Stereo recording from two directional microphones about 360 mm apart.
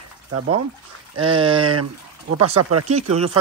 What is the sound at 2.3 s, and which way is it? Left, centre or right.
Speech, right.